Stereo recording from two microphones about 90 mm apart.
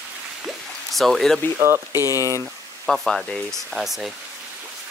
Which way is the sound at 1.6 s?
30° right (ahead or behind).